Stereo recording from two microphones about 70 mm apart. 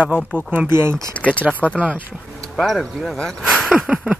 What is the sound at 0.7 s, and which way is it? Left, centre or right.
Speech, right.